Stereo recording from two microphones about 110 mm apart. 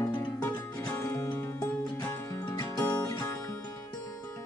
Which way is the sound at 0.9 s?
20° left (ahead or behind).